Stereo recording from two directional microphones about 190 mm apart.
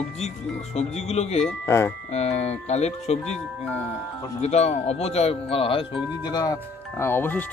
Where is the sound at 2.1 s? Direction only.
35° left (ahead or behind).